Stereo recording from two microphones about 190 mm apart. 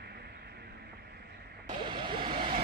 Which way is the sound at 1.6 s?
25° right (ahead or behind).